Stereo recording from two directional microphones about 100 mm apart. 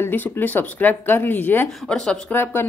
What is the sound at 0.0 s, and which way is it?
Speech, 20° left (ahead or behind).